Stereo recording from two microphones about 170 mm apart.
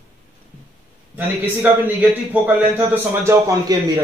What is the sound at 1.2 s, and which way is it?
A man's voice, 10° right (ahead or behind).